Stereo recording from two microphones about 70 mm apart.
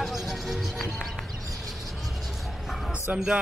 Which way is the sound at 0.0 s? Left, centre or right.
Centre.